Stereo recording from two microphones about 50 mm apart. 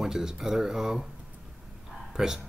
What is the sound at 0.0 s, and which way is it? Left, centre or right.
Speech, centre.